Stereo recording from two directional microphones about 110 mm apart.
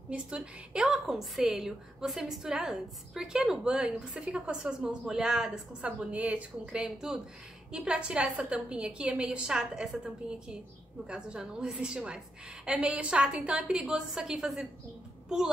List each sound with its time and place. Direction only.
0.1 s a woman's voice: 10° right (ahead or behind)
11.1 s a woman's voice: 10° right (ahead or behind)